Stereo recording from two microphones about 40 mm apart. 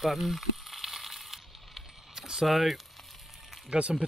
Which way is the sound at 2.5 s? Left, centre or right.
Centre.